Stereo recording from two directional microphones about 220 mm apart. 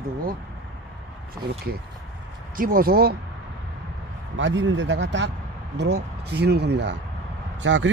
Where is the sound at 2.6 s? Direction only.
40° right (ahead or behind).